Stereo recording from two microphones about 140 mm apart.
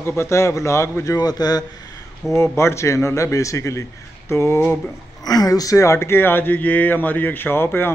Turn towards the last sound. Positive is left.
turn(degrees=15)  # may be behind; listen again after turning